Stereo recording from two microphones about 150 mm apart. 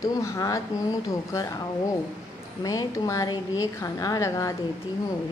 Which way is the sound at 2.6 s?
25° left (ahead or behind).